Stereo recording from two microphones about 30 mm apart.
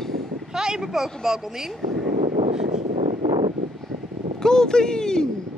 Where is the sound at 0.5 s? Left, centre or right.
Right.